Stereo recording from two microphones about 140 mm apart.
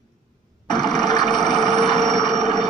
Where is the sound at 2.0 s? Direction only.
5° left (ahead or behind).